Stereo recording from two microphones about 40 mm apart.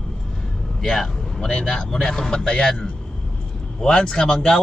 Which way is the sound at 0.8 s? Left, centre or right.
Centre.